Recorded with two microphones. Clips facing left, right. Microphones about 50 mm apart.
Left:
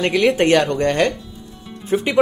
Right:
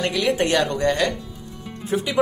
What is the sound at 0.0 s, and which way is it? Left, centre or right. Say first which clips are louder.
Speech: left 5 dB; left.